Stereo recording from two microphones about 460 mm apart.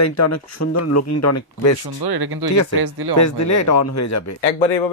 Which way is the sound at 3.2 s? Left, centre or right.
Left.